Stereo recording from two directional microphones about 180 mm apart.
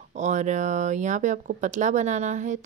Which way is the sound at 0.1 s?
40° right (ahead or behind).